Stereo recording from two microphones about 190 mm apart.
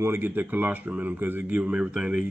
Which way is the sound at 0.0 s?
10° right (ahead or behind).